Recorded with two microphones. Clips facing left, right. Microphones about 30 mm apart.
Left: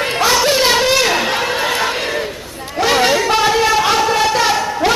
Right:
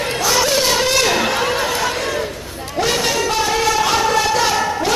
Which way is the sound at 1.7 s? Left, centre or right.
Left.